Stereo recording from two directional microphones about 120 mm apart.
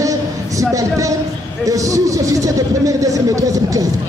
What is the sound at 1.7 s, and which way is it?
Speech, 25° right (ahead or behind).